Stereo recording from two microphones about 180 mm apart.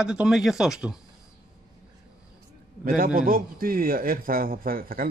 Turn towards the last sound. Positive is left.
turn(degrees=-55)  # may be behind; listen again after turning